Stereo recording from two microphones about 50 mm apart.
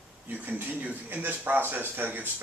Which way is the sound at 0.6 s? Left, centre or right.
Right.